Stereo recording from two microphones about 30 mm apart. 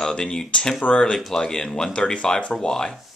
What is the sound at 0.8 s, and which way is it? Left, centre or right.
Speech, left.